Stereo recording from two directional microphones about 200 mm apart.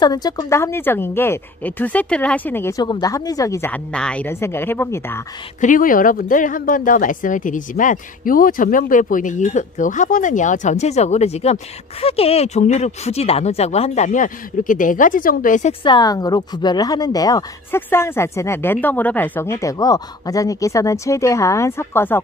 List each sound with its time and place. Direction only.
0.0 s speech: 20° left (ahead or behind)
5.6 s speech: 40° left (ahead or behind)
15.8 s speech: 20° left (ahead or behind)